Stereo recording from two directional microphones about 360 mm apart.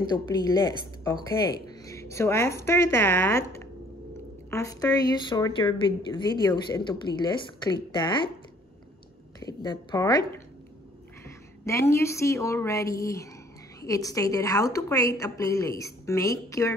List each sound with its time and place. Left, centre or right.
0.3 s speech: centre
9.4 s speech: centre
11.8 s speech: centre